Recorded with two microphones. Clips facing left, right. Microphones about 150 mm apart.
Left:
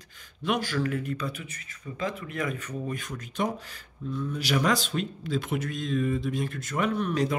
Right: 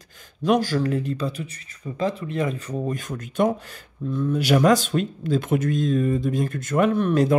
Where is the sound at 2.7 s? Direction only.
40° right (ahead or behind).